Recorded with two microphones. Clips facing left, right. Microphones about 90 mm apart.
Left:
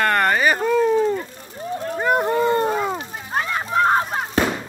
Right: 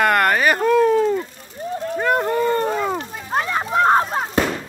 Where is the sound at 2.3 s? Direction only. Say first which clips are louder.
Even; 20° left (ahead or behind).